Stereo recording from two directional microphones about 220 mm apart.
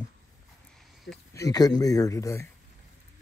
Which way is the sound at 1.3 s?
15° left (ahead or behind).